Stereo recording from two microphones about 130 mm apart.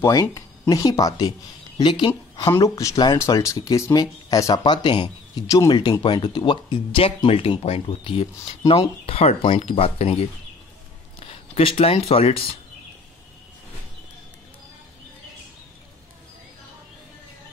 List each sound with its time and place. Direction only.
0.0 s speech: 25° left (ahead or behind)
2.6 s speech: 25° left (ahead or behind); by 12.4 s 50° left (ahead or behind)